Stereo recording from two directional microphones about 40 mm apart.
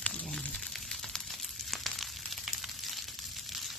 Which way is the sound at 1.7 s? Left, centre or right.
Centre.